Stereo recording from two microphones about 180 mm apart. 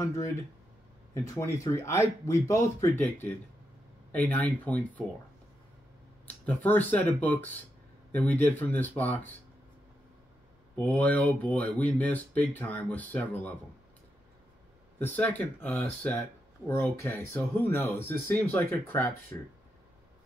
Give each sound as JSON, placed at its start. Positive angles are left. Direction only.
{"t": 1.1, "sound": "speech", "side_deg": 15}
{"t": 6.2, "sound": "speech", "side_deg": 10}
{"t": 10.8, "sound": "speech", "side_deg": 10}
{"t": 15.0, "sound": "speech", "side_deg": 10}